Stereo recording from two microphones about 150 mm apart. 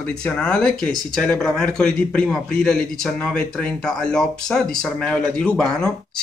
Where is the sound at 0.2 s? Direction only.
5° left (ahead or behind).